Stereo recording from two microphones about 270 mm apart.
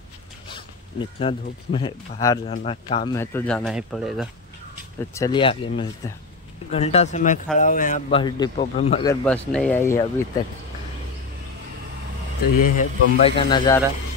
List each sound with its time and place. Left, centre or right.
0.5 s zipper: centre
1.7 s speech: centre
3.2 s speech: centre
5.1 s speech: centre
8.2 s speech: centre
12.6 s speech: left
13.5 s speech: centre